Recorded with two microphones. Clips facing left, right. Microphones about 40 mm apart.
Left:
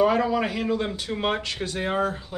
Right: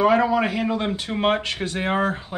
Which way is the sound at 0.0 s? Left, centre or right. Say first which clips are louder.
Right 3 dB; centre.